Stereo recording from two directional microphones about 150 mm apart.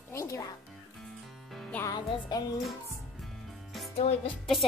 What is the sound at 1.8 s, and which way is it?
Music, 25° left (ahead or behind).